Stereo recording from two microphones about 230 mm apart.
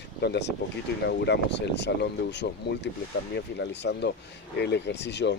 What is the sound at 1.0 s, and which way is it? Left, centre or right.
Speech, left.